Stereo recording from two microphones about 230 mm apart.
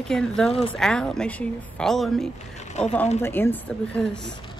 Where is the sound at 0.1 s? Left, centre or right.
Centre.